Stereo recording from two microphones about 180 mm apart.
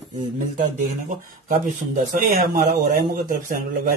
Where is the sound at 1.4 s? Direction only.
45° right (ahead or behind).